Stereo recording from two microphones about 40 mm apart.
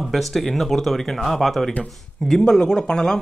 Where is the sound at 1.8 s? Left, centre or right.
Centre.